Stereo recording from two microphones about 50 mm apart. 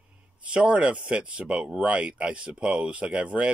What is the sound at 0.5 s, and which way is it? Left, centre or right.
Speech, right.